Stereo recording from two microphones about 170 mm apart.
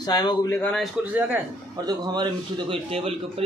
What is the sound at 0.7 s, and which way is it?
Speech, 10° right (ahead or behind).